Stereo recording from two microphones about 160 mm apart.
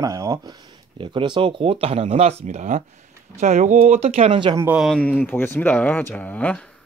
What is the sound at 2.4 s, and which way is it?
Speech, 50° right (ahead or behind).